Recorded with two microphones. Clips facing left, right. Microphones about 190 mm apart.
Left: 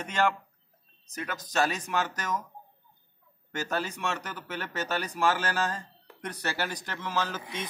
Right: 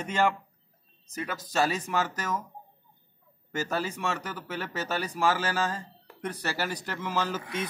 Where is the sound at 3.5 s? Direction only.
5° right (ahead or behind).